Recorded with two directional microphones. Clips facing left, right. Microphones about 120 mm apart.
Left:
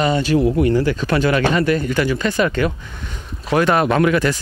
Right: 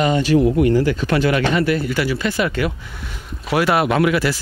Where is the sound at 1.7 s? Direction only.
45° left (ahead or behind).